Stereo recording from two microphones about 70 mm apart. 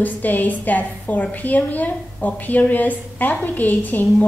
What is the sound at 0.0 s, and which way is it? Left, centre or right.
A woman's voice, left.